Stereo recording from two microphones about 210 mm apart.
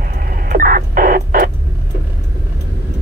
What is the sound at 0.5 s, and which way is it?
Radio, 45° right (ahead or behind).